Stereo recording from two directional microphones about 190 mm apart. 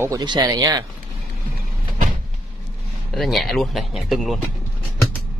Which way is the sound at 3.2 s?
Centre (ahead or behind).